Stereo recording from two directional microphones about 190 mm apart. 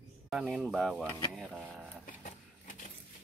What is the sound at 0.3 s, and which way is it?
Speech, 5° right (ahead or behind).